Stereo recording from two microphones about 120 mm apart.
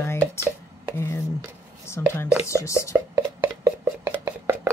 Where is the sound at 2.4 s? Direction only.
25° left (ahead or behind).